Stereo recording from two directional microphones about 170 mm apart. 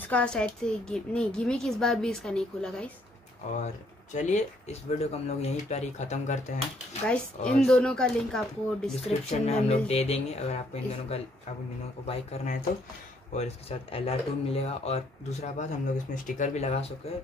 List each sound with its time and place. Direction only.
0.0 s a woman's voice: 5° left (ahead or behind)
3.5 s speech: 45° left (ahead or behind)
7.1 s speech: 5° left (ahead or behind)
8.9 s speech: 35° left (ahead or behind)